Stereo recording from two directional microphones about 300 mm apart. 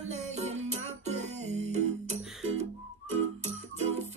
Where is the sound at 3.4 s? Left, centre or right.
Right.